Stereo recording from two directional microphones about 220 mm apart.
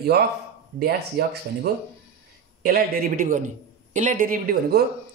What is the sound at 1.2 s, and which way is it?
Speech, 45° right (ahead or behind).